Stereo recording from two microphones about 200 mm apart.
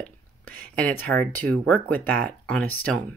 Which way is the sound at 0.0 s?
5° left (ahead or behind).